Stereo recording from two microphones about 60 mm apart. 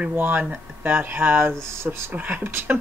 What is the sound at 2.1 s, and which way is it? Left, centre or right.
Speech, right.